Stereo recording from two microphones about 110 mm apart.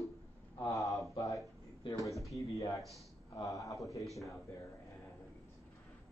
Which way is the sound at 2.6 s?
30° left (ahead or behind).